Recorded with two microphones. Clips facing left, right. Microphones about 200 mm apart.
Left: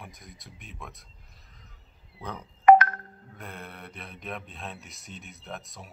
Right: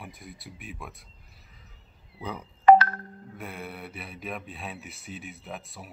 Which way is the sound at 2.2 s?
5° right (ahead or behind).